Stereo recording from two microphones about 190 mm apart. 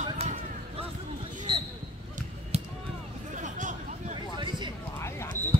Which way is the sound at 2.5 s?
35° right (ahead or behind).